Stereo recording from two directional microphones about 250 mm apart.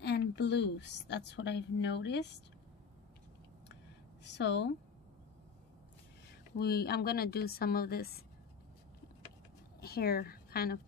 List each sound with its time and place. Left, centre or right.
0.0 s a woman's voice: left
4.2 s a woman's voice: left
6.6 s a woman's voice: left
9.8 s a woman's voice: left